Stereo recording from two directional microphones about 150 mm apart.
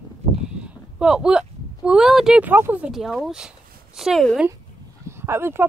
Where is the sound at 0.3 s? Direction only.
5° right (ahead or behind).